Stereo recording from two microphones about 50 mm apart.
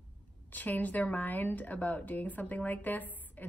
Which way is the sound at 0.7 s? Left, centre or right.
Left.